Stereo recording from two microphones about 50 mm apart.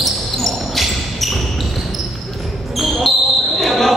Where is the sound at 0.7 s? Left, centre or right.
Centre.